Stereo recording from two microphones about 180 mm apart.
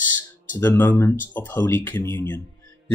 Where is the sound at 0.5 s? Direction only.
10° left (ahead or behind).